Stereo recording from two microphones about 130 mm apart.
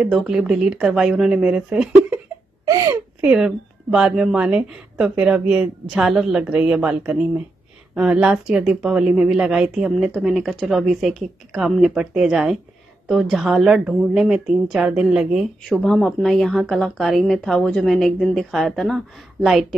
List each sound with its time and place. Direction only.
0.0 s a woman's voice: 5° right (ahead or behind)
2.6 s speech: 30° right (ahead or behind)
3.2 s a woman's voice: 5° right (ahead or behind)